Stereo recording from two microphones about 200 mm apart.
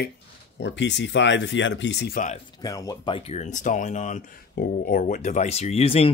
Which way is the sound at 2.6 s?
20° left (ahead or behind).